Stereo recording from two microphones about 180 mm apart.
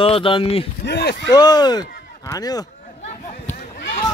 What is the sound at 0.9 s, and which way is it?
Speech, 70° left (ahead or behind).